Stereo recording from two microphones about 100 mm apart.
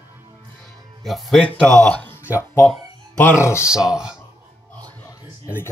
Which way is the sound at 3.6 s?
5° right (ahead or behind).